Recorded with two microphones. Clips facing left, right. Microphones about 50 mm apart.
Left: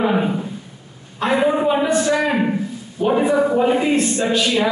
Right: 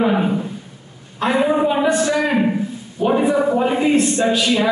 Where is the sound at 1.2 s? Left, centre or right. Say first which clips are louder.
Even; centre.